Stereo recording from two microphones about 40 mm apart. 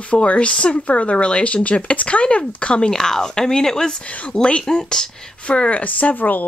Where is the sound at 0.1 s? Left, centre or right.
Left.